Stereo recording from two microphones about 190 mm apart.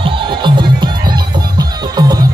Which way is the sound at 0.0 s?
25° right (ahead or behind).